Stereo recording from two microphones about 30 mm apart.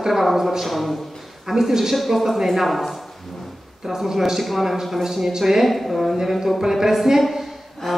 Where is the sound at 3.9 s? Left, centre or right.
Centre.